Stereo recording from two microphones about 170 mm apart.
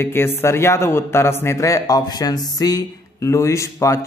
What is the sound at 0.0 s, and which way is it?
A man's voice, 15° left (ahead or behind).